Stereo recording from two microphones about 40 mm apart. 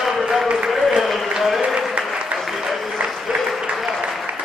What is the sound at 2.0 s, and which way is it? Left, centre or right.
Applause, right.